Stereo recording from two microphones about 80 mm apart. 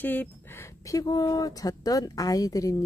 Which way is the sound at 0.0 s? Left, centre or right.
Left.